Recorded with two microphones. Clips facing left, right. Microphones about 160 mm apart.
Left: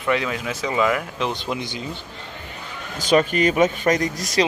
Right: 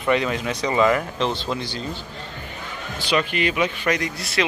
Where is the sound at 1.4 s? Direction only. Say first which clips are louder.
Even; 20° left (ahead or behind).